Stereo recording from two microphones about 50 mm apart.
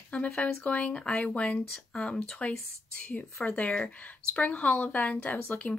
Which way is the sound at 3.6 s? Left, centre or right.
Centre.